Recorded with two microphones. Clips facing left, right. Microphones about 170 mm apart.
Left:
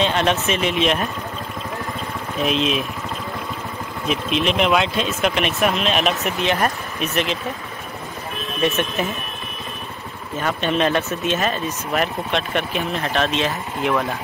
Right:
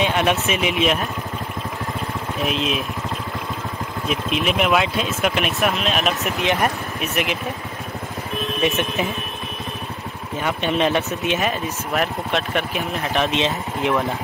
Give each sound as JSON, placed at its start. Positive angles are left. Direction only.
{"t": 0.0, "sound": "speech", "side_deg": -10}
{"t": 2.4, "sound": "speech", "side_deg": 0}
{"t": 4.1, "sound": "speech", "side_deg": -5}
{"t": 6.4, "sound": "speech", "side_deg": -15}
{"t": 8.6, "sound": "speech", "side_deg": -15}
{"t": 10.4, "sound": "speech", "side_deg": -15}
{"t": 11.9, "sound": "speech", "side_deg": 0}